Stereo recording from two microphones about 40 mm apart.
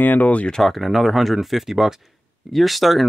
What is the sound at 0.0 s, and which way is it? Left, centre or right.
Speech, left.